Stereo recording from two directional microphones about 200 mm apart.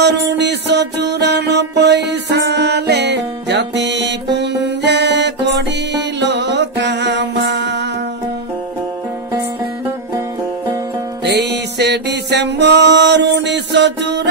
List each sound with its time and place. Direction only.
0.0 s music: 60° right (ahead or behind)
11.2 s music: 55° right (ahead or behind)